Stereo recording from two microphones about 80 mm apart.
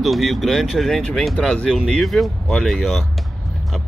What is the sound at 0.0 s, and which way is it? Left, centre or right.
Speech, centre.